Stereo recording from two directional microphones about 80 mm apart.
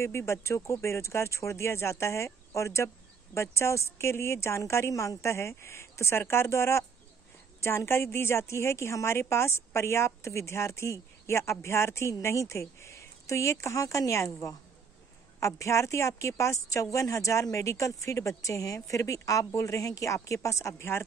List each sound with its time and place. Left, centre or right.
0.0 s speech: left